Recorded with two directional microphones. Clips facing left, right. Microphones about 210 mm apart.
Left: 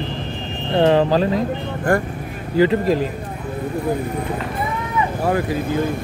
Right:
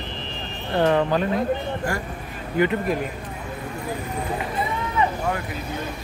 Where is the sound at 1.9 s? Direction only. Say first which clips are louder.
Left 15 dB; 55° left (ahead or behind).